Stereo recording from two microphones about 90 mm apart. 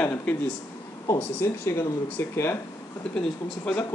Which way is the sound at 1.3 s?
25° left (ahead or behind).